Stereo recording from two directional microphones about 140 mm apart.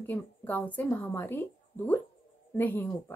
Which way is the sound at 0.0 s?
15° left (ahead or behind).